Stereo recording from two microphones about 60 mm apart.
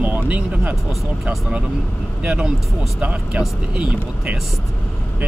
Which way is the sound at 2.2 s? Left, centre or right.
Centre.